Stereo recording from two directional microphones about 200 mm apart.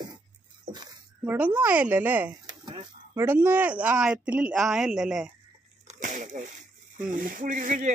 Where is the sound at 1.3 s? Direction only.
10° right (ahead or behind).